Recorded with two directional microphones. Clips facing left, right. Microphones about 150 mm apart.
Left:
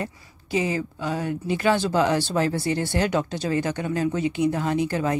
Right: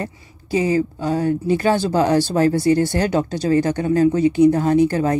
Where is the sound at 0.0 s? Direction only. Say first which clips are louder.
Right 3 dB; 35° right (ahead or behind).